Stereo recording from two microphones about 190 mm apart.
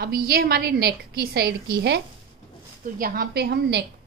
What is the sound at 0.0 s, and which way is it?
A woman's voice, 55° right (ahead or behind).